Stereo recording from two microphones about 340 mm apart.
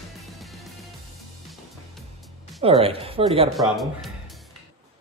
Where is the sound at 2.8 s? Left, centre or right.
Centre.